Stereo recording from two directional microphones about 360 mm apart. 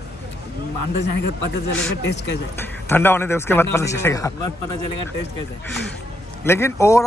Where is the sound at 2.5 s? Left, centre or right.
Centre.